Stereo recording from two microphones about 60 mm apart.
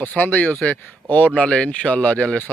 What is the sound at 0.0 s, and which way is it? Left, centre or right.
Speech, left.